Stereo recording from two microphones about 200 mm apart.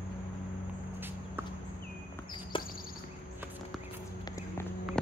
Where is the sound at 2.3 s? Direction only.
25° left (ahead or behind).